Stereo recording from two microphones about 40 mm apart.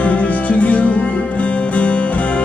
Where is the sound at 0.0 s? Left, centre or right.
Left.